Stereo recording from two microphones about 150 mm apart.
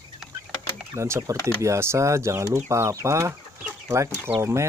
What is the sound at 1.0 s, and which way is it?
Speech, 20° right (ahead or behind).